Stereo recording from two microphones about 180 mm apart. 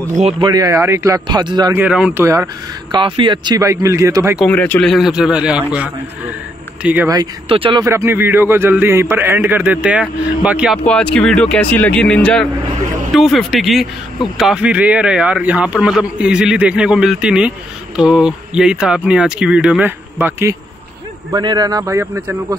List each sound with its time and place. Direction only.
0.1 s speech: 40° right (ahead or behind)
0.4 s a man's voice: 20° right (ahead or behind)
1.8 s a man's voice: 5° right (ahead or behind)
2.2 s a man's voice: 20° right (ahead or behind)
4.5 s a man's voice: 10° left (ahead or behind); by 7.1 s 10° right (ahead or behind)
7.1 s a man's voice: 25° right (ahead or behind)
7.8 s a man's voice: 15° right (ahead or behind)
21.3 s a man's voice: 25° right (ahead or behind)